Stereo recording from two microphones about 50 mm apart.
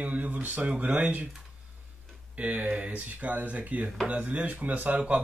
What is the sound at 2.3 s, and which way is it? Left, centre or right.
A man's voice, right.